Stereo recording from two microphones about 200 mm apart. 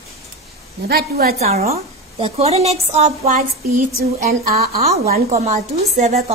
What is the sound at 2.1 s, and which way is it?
A woman's voice, 30° right (ahead or behind).